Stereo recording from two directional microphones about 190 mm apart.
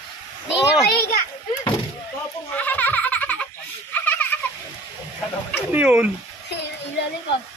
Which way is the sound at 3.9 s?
10° left (ahead or behind).